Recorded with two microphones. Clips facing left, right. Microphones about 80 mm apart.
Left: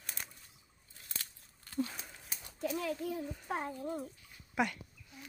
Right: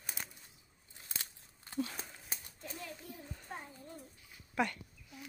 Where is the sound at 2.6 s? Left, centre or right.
Left.